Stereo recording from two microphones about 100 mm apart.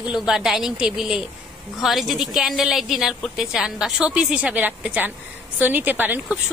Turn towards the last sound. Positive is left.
turn(degrees=-20)  # may be behind; listen again after turning